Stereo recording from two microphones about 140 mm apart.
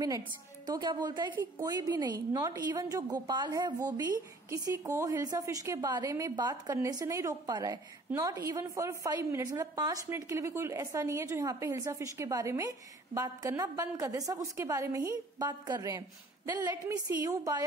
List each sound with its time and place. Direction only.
0.7 s a woman's voice: 30° right (ahead or behind)